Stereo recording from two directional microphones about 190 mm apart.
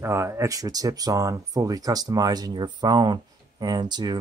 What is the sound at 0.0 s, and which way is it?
Speech, 15° right (ahead or behind).